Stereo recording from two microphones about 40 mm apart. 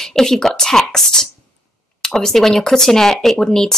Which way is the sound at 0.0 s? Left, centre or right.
Centre.